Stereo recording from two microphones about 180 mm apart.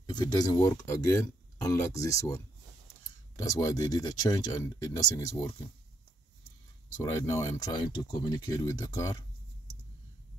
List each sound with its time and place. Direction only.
0.0 s speech: 20° left (ahead or behind)
3.4 s speech: 20° left (ahead or behind)
7.0 s speech: 20° left (ahead or behind)